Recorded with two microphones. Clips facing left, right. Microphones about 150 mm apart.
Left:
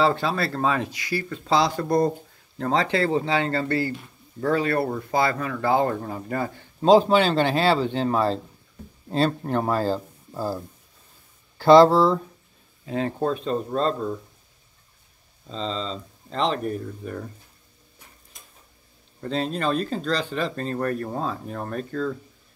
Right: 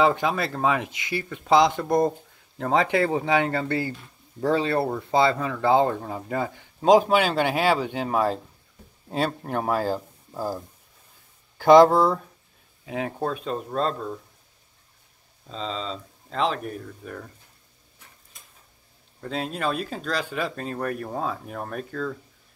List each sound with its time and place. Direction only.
0.0 s speech: 15° right (ahead or behind)
9.5 s speech: 10° right (ahead or behind)
15.4 s speech: 5° right (ahead or behind)
19.2 s speech: 5° right (ahead or behind)